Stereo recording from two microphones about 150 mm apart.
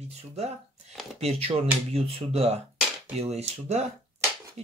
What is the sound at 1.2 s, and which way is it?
Speech, 40° right (ahead or behind).